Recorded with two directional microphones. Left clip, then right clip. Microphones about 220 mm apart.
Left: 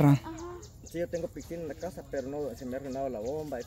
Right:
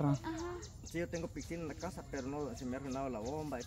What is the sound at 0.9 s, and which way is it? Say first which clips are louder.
Speech: left 7 dB; 20° right (ahead or behind).